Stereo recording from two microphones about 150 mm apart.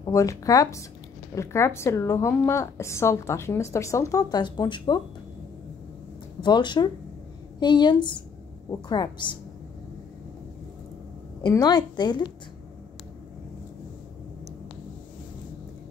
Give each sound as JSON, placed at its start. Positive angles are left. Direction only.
{"t": 0.0, "sound": "a woman's voice", "side_deg": 20}
{"t": 6.4, "sound": "a woman's voice", "side_deg": 30}
{"t": 11.4, "sound": "a woman's voice", "side_deg": 25}